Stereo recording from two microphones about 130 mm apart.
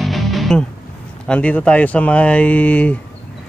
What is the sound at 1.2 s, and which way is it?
Speech, 10° left (ahead or behind).